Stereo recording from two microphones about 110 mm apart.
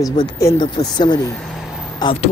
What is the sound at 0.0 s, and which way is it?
Speech, 35° left (ahead or behind).